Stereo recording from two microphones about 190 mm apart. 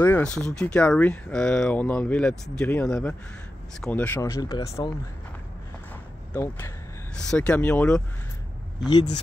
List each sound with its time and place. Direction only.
0.0 s speech: 5° left (ahead or behind)
6.3 s speech: 10° left (ahead or behind)